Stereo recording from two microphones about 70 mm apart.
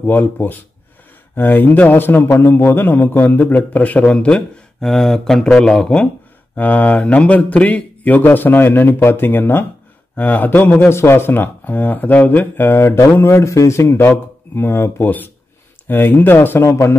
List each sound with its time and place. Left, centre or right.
0.0 s speech: left
4.7 s speech: centre
6.5 s speech: left
10.9 s a man's voice: left
13.8 s speech: left